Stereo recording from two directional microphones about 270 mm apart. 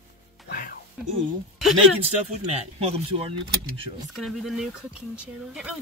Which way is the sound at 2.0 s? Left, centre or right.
Right.